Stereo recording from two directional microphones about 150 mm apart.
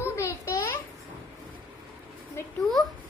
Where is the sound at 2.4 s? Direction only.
15° left (ahead or behind).